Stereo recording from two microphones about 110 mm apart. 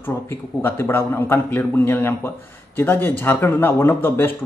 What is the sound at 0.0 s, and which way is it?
A man's voice, 20° left (ahead or behind).